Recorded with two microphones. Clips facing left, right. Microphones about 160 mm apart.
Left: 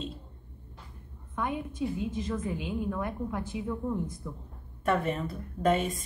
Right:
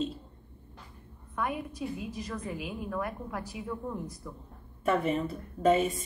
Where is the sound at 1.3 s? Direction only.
25° left (ahead or behind).